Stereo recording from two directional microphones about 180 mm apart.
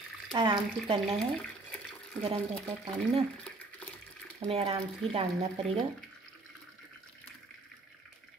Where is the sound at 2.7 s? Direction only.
30° right (ahead or behind).